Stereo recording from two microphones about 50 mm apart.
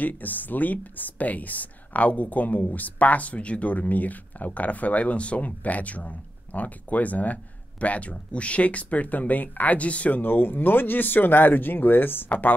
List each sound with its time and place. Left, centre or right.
0.0 s speech: left